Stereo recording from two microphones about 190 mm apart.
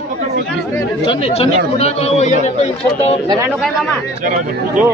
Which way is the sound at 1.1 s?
30° left (ahead or behind).